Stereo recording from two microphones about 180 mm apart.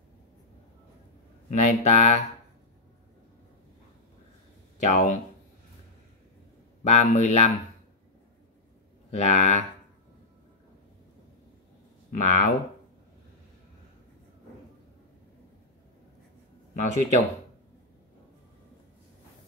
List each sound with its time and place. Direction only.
1.5 s speech: 40° left (ahead or behind)
4.7 s speech: 45° left (ahead or behind)
6.8 s speech: 40° left (ahead or behind)
9.1 s speech: 40° left (ahead or behind)
12.1 s speech: 45° left (ahead or behind)
16.7 s speech: 40° left (ahead or behind)